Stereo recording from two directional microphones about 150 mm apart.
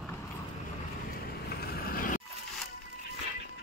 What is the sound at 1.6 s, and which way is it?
Vehicle, 85° left.